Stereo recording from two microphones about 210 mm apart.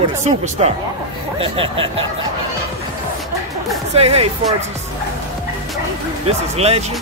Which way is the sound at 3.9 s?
30° right (ahead or behind).